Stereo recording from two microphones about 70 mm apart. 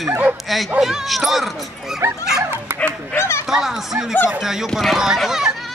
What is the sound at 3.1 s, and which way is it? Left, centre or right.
Speech, left.